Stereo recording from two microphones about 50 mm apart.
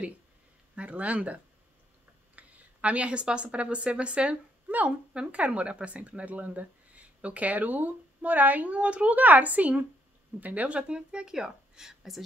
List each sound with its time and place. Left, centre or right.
0.7 s speech: right
4.6 s speech: right
5.1 s a woman's voice: right; by 12.3 s centre